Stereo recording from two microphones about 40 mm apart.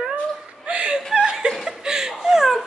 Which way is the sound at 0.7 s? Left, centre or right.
Right.